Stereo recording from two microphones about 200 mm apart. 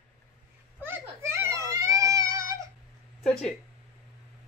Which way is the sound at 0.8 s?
10° right (ahead or behind).